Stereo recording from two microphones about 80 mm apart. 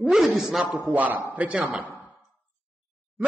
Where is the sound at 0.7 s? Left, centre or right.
Right.